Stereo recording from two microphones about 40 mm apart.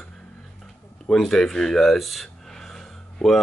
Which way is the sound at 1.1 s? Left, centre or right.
Centre.